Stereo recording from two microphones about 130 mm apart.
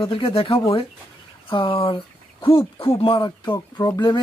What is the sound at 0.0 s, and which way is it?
Speech, 45° left (ahead or behind).